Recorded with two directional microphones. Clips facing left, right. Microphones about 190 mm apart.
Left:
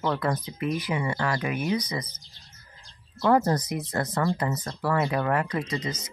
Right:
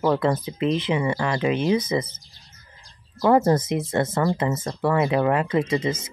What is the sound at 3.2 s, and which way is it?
Speech, 25° right (ahead or behind).